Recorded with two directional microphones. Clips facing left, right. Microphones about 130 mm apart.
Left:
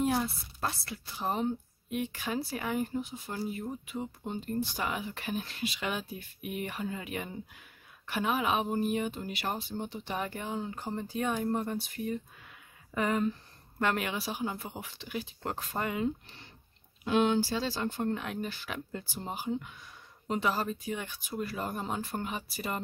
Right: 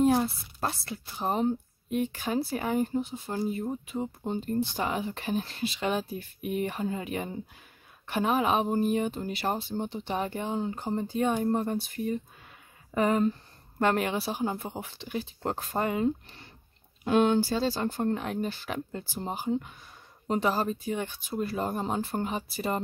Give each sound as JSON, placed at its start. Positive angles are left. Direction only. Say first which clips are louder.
{"t": 0.0, "sound": "speech", "louder": "right 6 dB", "side_deg": -35}